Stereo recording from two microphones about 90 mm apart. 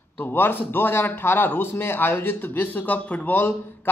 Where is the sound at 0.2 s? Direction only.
25° left (ahead or behind).